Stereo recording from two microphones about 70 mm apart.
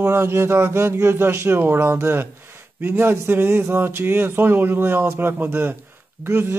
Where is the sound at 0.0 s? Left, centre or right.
Right.